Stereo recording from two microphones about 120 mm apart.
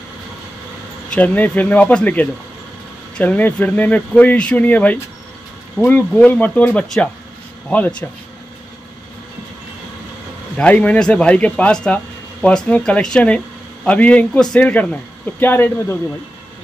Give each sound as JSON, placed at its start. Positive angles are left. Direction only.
{"t": 1.1, "sound": "speech", "side_deg": 15}
{"t": 10.6, "sound": "speech", "side_deg": 10}